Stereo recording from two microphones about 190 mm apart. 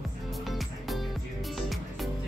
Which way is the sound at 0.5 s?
Centre (ahead or behind).